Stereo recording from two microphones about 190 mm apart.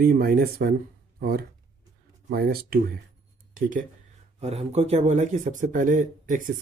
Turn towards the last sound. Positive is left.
turn(degrees=-45)  # may be behind; listen again after turning